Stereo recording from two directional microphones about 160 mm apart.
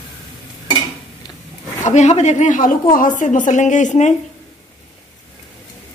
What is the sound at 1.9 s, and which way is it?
A woman's voice, 45° left (ahead or behind).